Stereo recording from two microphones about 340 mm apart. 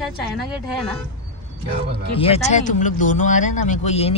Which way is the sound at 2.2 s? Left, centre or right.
Centre.